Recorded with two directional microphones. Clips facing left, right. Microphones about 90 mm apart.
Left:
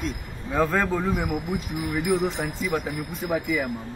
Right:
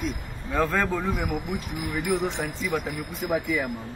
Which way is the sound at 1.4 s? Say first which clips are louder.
Left 2 dB; 25° left (ahead or behind).